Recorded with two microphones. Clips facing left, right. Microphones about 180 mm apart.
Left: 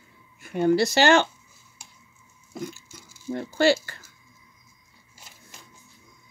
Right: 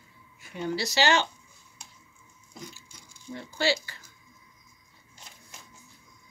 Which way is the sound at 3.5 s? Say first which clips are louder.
Left 7 dB; 50° left (ahead or behind).